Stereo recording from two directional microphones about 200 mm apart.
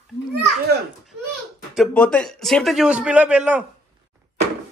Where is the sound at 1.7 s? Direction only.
5° left (ahead or behind).